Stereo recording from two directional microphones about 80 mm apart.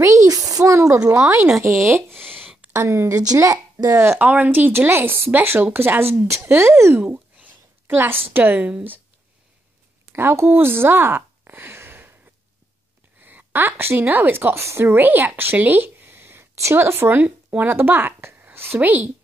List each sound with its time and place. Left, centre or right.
0.0 s a sound: right
1.1 s speech: right
2.1 s a sound: centre
2.7 s speech: right
3.2 s speech: right
4.2 s speech: right
7.0 s a sound: centre
8.3 s speech: right
10.1 s speech: right
13.2 s a woman's voice: right
14.9 s a woman's voice: right